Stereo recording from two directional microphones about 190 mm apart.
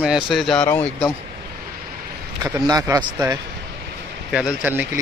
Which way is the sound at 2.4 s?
20° right (ahead or behind).